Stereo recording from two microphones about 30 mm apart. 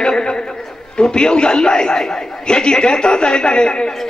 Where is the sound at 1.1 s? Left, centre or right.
Left.